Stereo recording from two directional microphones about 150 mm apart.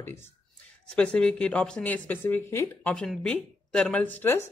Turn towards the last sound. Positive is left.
turn(degrees=15)  # may be behind; listen again after turning